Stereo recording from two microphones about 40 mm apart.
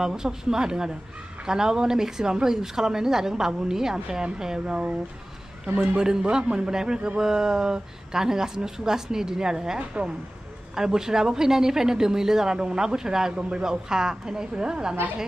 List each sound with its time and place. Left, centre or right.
0.0 s a woman's voice: centre
5.9 s a man's voice: centre